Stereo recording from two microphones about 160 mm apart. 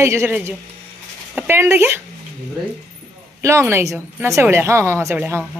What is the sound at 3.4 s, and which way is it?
A woman's voice, 15° right (ahead or behind).